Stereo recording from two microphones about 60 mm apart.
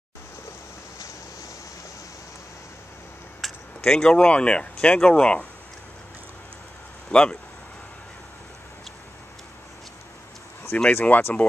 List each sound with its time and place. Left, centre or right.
3.3 s speech: centre
7.1 s speech: centre
10.9 s speech: left